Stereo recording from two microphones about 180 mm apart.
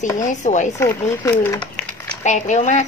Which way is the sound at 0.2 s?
45° left (ahead or behind).